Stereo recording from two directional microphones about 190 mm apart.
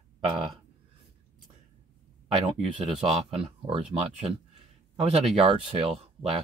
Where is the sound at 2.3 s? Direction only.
25° right (ahead or behind).